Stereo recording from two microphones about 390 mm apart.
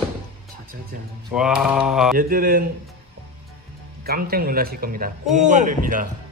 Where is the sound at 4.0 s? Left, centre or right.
Right.